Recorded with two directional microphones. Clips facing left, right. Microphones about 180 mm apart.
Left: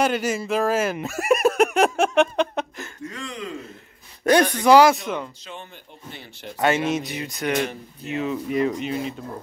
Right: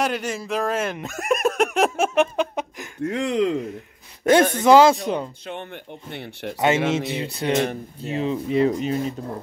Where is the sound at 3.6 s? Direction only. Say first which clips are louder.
Right 9 dB; 15° right (ahead or behind).